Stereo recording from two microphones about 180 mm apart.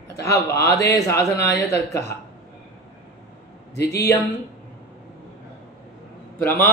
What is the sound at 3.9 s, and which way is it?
Speech, 15° left (ahead or behind).